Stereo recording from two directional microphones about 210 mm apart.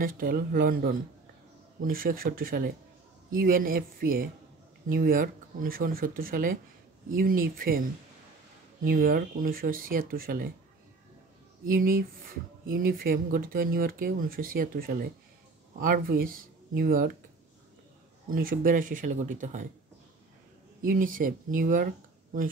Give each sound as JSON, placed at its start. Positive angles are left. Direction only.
{"t": 0.0, "sound": "speech", "side_deg": -40}
{"t": 8.8, "sound": "speech", "side_deg": -45}
{"t": 11.6, "sound": "speech", "side_deg": -40}
{"t": 18.3, "sound": "speech", "side_deg": -40}
{"t": 20.8, "sound": "speech", "side_deg": -40}